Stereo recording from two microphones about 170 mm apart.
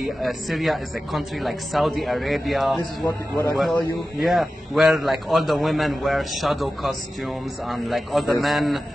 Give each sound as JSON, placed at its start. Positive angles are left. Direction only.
{"t": 0.2, "sound": "a man's voice", "side_deg": 0}
{"t": 3.1, "sound": "a man's voice", "side_deg": 15}
{"t": 4.2, "sound": "a man's voice", "side_deg": 0}